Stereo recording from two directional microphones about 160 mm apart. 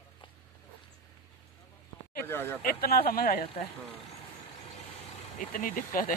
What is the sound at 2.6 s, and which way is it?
Speech, 70° left (ahead or behind).